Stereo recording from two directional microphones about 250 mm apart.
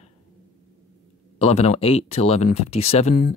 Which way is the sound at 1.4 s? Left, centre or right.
Left.